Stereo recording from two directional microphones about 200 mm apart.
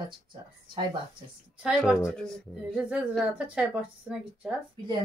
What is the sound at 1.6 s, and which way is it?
Speech, 5° right (ahead or behind).